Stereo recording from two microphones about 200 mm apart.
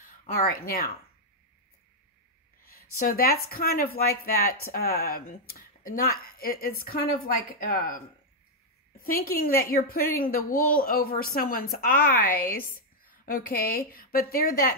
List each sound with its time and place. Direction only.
0.0 s speech: 45° left (ahead or behind)
3.0 s a woman's voice: 45° left (ahead or behind)
8.9 s a woman's voice: 45° left (ahead or behind)